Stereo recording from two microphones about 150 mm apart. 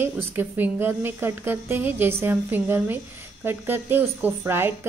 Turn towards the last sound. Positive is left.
turn(degrees=-15)  # may be behind; listen again after turning